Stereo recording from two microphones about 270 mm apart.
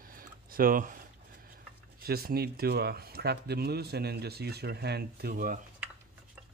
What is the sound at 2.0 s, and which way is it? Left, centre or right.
Speech, right.